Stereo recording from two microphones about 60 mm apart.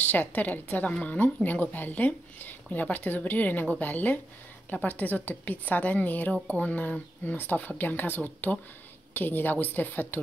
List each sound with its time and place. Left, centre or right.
0.0 s a woman's voice: left